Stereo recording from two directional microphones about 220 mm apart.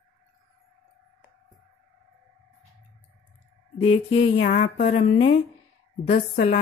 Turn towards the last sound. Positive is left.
turn(degrees=30)  # may be behind; listen again after turning